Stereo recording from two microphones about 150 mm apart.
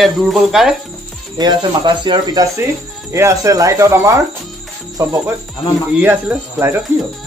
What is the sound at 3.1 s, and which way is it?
Speech, 20° right (ahead or behind).